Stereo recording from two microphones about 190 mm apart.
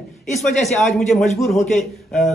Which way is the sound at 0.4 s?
Centre (ahead or behind).